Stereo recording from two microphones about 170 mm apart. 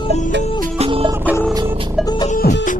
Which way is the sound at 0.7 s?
35° right (ahead or behind).